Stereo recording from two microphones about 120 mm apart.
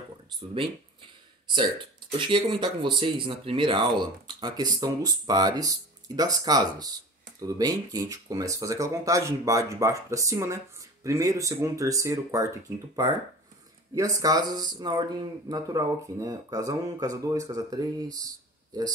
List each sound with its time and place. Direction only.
2.1 s speech: 45° right (ahead or behind)